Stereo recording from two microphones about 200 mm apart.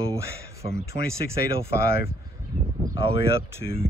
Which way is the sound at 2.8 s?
20° right (ahead or behind).